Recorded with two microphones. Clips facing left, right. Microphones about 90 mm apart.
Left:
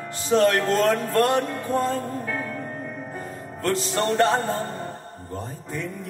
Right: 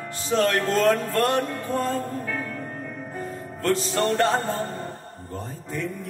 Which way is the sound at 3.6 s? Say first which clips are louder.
Right 1 dB; 25° left (ahead or behind).